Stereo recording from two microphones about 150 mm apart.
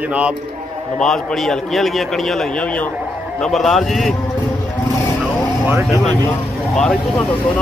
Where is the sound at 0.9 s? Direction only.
5° left (ahead or behind).